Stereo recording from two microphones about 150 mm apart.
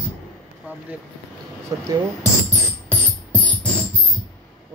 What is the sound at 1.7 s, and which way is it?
Speech, 20° right (ahead or behind).